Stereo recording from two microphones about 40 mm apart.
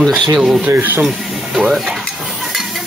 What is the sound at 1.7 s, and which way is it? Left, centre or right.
Speech, centre.